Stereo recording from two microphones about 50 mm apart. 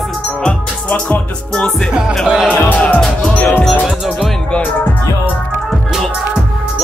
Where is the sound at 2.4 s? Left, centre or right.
Left.